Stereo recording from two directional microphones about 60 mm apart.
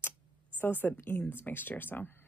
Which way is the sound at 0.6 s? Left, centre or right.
Left.